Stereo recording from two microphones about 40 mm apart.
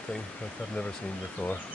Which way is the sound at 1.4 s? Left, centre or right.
Left.